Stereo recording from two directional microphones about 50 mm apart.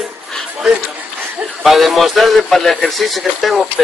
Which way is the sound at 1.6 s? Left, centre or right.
Centre.